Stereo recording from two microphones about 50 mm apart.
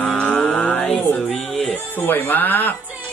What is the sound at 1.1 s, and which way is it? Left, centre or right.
Music, centre.